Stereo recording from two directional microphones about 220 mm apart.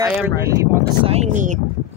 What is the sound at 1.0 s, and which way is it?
Speech, 30° right (ahead or behind).